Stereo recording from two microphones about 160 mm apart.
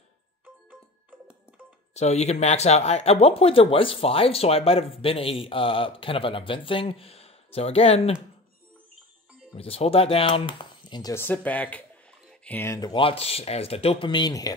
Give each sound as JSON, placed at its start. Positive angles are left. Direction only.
{"t": 2.0, "sound": "speech", "side_deg": 45}
{"t": 9.6, "sound": "speech", "side_deg": 35}
{"t": 11.2, "sound": "speech", "side_deg": 10}
{"t": 12.9, "sound": "speech", "side_deg": 35}